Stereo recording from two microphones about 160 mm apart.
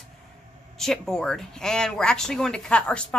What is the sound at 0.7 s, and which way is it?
Speech, centre (ahead or behind).